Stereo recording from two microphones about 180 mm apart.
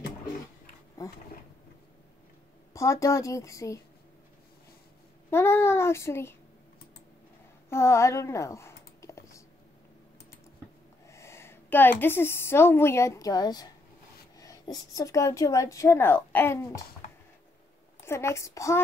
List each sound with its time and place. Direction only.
2.7 s a woman's voice: 15° left (ahead or behind)
5.3 s a woman's voice: 15° left (ahead or behind)
7.7 s typing: 15° left (ahead or behind)
11.1 s a woman's voice: 15° left (ahead or behind)
18.0 s a woman's voice: 15° left (ahead or behind)